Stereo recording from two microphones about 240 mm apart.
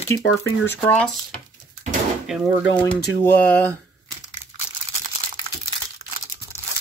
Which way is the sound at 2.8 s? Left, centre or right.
Centre.